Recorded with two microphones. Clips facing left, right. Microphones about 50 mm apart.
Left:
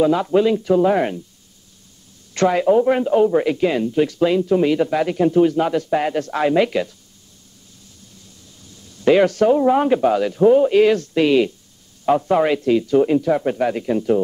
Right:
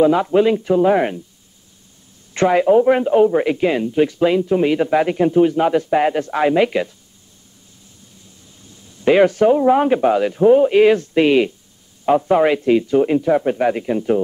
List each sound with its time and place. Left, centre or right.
0.0 s a man's voice: centre
2.3 s a man's voice: centre
8.6 s a sound: right
9.6 s a man's voice: centre